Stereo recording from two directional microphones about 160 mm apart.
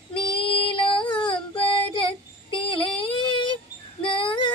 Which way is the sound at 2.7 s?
30° left (ahead or behind).